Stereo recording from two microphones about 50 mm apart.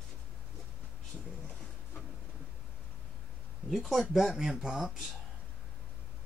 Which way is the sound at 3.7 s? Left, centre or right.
Centre.